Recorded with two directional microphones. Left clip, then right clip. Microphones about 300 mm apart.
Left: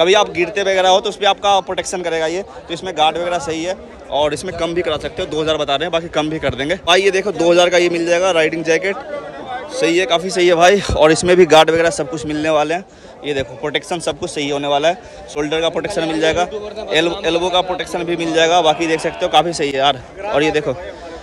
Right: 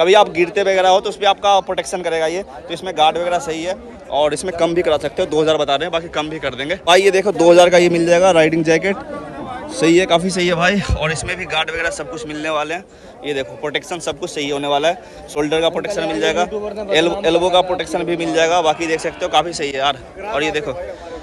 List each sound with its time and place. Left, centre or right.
0.0 s speech: centre